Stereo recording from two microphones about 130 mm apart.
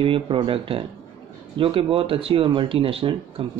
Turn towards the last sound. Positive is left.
turn(degrees=-45)  # may be behind; listen again after turning